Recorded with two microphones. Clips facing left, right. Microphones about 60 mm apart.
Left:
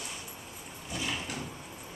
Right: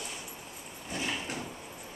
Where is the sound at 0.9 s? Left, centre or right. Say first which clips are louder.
Right 1 dB; right.